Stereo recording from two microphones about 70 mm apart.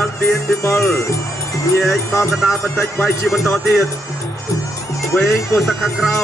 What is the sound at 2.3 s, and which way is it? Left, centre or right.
Music, centre.